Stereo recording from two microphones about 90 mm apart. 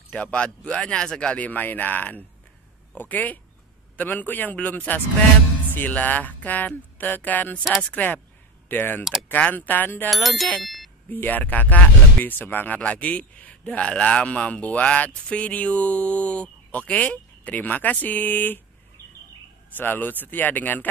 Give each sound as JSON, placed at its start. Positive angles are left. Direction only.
{"t": 0.1, "sound": "a man's voice", "side_deg": 15}
{"t": 10.0, "sound": "bicycle bell", "side_deg": 0}
{"t": 10.6, "sound": "ding", "side_deg": 0}
{"t": 11.1, "sound": "speech", "side_deg": 20}
{"t": 19.8, "sound": "a man's voice", "side_deg": 20}